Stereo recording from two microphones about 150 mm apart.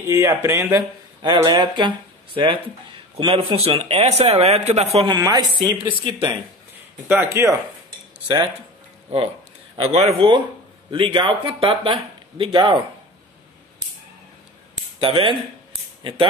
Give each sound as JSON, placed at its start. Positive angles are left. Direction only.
{"t": 0.0, "sound": "speech", "side_deg": -20}
{"t": 1.2, "sound": "speech", "side_deg": -30}
{"t": 5.0, "sound": "speech", "side_deg": -30}
{"t": 7.1, "sound": "speech", "side_deg": -15}
{"t": 9.8, "sound": "speech", "side_deg": -45}
{"t": 15.0, "sound": "speech", "side_deg": -35}